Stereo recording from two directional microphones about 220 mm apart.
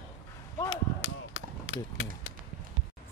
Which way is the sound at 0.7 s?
65° left (ahead or behind).